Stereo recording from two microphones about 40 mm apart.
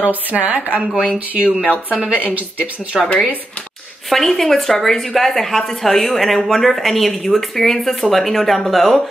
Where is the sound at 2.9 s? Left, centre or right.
Centre.